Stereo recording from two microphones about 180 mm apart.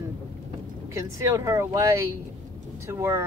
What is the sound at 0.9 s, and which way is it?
Speech, 15° right (ahead or behind).